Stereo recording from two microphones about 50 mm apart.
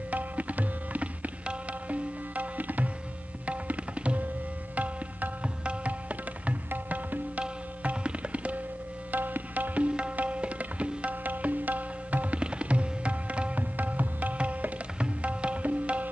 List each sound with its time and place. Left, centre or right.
0.1 s tabla: right
4.7 s music: right
6.7 s tabla: right
9.1 s tabla: right